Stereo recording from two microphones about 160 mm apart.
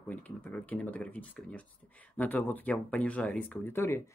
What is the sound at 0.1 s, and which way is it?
Speech, 10° left (ahead or behind).